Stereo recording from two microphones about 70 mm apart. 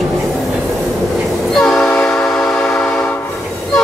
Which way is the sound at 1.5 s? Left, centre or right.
Centre.